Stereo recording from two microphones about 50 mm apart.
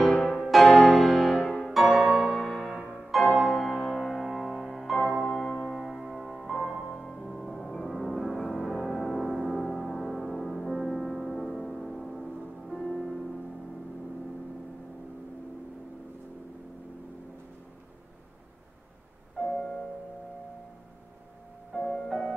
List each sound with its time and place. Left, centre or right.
0.1 s music: centre
1.4 s music: left
1.7 s music: centre
19.3 s music: centre
21.7 s music: centre